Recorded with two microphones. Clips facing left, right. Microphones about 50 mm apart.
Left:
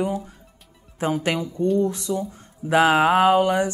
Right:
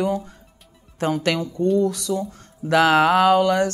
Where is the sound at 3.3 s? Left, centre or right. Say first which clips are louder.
Right 1 dB; right.